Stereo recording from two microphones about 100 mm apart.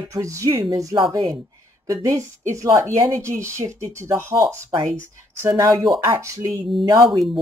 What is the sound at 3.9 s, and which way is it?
Speech, 30° right (ahead or behind).